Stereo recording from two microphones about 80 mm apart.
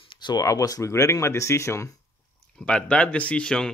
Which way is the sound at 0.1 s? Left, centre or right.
Left.